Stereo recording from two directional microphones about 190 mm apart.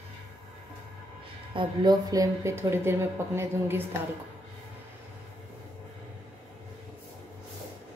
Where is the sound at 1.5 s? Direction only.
25° right (ahead or behind).